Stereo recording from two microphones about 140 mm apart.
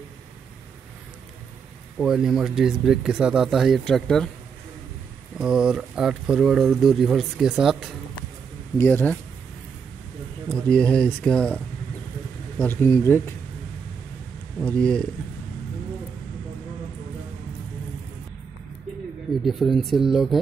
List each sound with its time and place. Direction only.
2.0 s speech: 5° right (ahead or behind)
5.4 s speech: 5° right (ahead or behind)
8.7 s speech: 15° left (ahead or behind)
10.5 s speech: 5° left (ahead or behind)
12.5 s speech: 15° left (ahead or behind)
14.6 s speech: 5° left (ahead or behind)
19.4 s speech: centre (ahead or behind)